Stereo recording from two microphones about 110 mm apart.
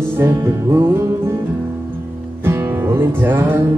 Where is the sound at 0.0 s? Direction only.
20° right (ahead or behind).